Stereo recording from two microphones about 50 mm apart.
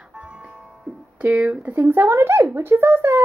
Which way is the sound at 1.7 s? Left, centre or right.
Right.